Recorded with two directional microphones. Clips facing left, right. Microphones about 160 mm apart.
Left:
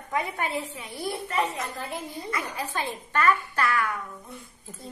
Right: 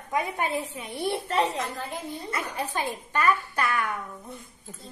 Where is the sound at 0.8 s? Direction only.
30° right (ahead or behind).